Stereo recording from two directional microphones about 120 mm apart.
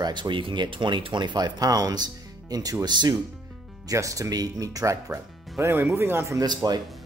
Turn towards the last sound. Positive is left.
turn(degrees=-30)  # may be behind; listen again after turning